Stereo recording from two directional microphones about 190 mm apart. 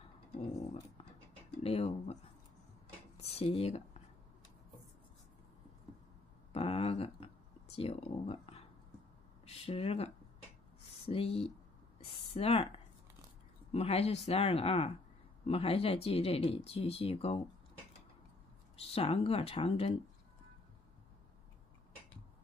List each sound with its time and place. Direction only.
1.6 s speech: 30° left (ahead or behind)
3.2 s speech: 35° left (ahead or behind)
6.5 s a sound: 30° left (ahead or behind)
7.7 s speech: 30° left (ahead or behind)
12.0 s a sound: 30° left (ahead or behind)
13.7 s speech: 30° left (ahead or behind)
18.8 s speech: 30° left (ahead or behind)